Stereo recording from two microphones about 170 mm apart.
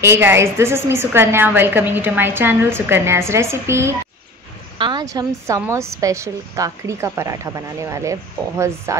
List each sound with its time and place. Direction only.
0.0 s a woman's voice: 15° right (ahead or behind)